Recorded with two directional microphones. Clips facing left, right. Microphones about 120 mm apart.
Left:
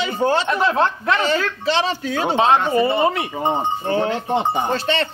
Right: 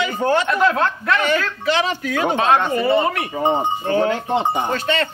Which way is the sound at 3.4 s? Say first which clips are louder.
Right 4 dB; 15° right (ahead or behind).